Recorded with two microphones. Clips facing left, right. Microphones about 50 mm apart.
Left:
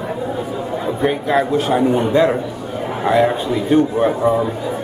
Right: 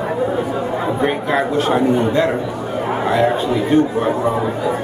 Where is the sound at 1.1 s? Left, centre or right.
Centre.